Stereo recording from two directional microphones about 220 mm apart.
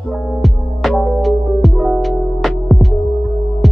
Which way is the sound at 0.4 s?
Centre (ahead or behind).